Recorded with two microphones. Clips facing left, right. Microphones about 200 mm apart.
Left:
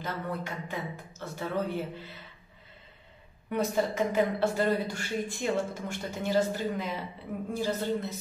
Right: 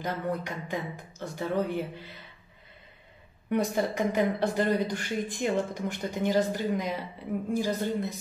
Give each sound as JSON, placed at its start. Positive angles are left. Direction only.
{"t": 0.0, "sound": "speech", "side_deg": -15}
{"t": 3.5, "sound": "speech", "side_deg": -15}